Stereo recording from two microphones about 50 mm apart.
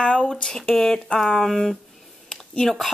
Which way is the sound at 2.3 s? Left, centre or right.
Centre.